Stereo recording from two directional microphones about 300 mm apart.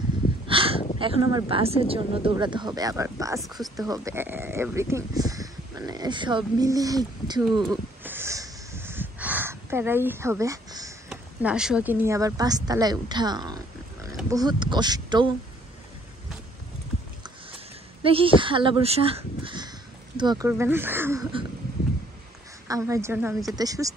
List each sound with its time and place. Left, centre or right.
0.5 s a sound: centre
0.9 s speech: centre
3.4 s speech: centre
3.7 s speech: centre
7.6 s snort: centre
14.0 s speech: centre
18.0 s speech: centre
22.7 s speech: centre